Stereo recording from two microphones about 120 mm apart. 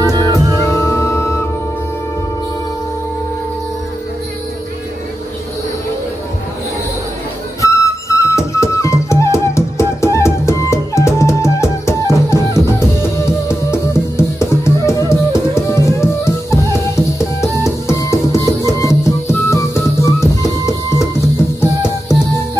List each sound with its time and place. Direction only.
0.2 s music: 25° left (ahead or behind)
7.6 s flute: 25° left (ahead or behind)
17.2 s music: 25° left (ahead or behind)